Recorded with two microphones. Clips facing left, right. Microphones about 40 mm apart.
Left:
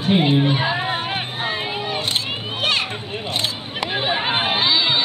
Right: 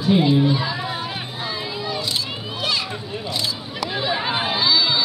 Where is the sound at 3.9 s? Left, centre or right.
Left.